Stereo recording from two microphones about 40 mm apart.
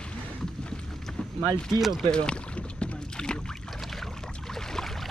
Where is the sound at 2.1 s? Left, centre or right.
Left.